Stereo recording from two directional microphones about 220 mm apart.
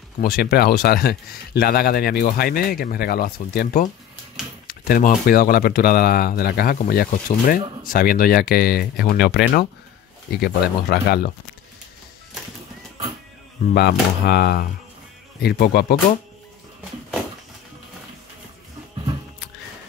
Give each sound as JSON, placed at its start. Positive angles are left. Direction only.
{"t": 0.2, "sound": "speech", "side_deg": 40}
{"t": 10.4, "sound": "speech", "side_deg": 45}
{"t": 13.7, "sound": "speech", "side_deg": 50}